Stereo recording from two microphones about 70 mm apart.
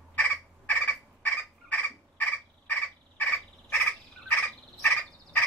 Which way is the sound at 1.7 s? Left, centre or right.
Left.